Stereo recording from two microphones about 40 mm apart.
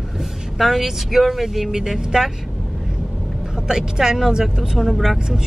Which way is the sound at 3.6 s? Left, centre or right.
Centre.